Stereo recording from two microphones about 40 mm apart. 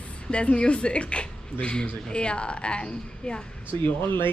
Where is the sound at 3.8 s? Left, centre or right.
Left.